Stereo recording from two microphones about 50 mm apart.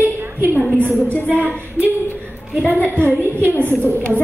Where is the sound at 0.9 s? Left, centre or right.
Left.